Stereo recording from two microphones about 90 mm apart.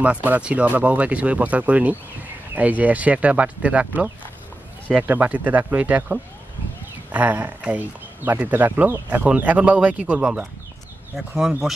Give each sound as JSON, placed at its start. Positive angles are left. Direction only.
{"t": 0.0, "sound": "speech", "side_deg": -15}
{"t": 11.1, "sound": "speech", "side_deg": -5}